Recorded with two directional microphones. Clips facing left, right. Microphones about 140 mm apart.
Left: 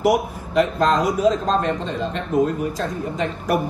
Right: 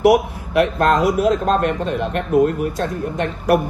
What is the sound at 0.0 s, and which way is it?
A man's voice, 65° right (ahead or behind).